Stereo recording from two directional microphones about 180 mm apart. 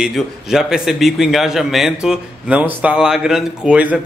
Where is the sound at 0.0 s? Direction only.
5° right (ahead or behind).